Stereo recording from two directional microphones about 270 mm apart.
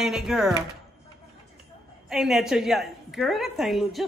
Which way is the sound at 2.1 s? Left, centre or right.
Centre.